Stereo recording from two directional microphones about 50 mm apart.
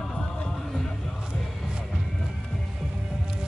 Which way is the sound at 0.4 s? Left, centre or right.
Centre.